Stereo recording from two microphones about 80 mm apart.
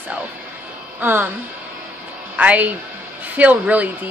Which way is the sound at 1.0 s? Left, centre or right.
Right.